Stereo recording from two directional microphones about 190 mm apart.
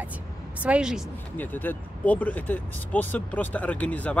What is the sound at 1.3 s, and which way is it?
Speech, 10° left (ahead or behind).